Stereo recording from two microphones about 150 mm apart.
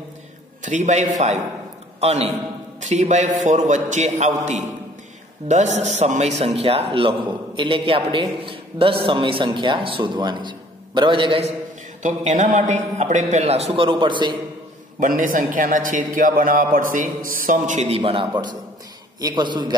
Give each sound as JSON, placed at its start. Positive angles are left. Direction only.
{"t": 0.7, "sound": "a man's voice", "side_deg": -55}
{"t": 12.0, "sound": "a man's voice", "side_deg": -55}
{"t": 15.0, "sound": "a man's voice", "side_deg": -60}